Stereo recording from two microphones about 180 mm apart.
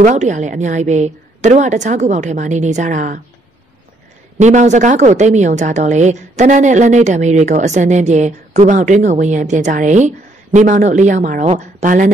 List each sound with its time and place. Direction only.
0.0 s a woman's voice: 40° right (ahead or behind)
4.4 s a woman's voice: 40° right (ahead or behind)